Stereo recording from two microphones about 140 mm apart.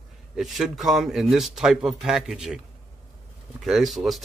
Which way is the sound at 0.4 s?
Centre (ahead or behind).